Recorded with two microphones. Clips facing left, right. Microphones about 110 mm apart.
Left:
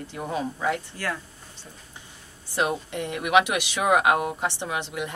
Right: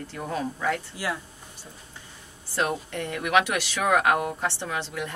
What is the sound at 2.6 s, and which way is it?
Speech, 15° left (ahead or behind).